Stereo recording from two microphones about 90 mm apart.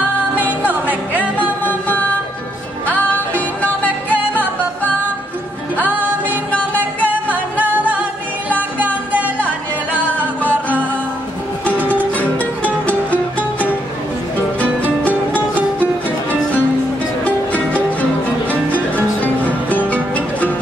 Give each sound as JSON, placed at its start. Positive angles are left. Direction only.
{"t": 0.7, "sound": "music", "side_deg": -20}
{"t": 1.6, "sound": "music", "side_deg": 15}
{"t": 5.8, "sound": "music", "side_deg": -20}
{"t": 9.9, "sound": "music", "side_deg": 15}
{"t": 10.5, "sound": "music", "side_deg": -20}
{"t": 12.0, "sound": "music", "side_deg": 15}
{"t": 15.3, "sound": "music", "side_deg": -20}
{"t": 17.2, "sound": "music", "side_deg": 15}